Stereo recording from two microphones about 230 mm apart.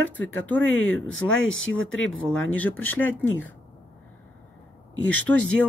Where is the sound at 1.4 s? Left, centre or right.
Left.